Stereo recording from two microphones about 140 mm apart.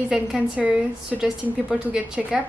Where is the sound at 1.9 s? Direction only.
5° right (ahead or behind).